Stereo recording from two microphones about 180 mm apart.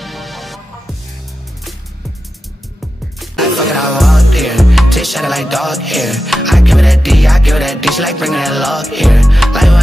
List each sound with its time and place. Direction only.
0.0 s music: centre (ahead or behind)
3.2 s music: centre (ahead or behind)